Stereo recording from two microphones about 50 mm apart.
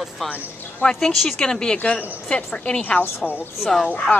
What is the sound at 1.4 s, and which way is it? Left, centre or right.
A woman's voice, centre.